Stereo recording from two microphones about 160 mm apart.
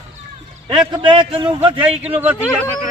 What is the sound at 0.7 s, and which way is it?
A man's voice, 30° right (ahead or behind).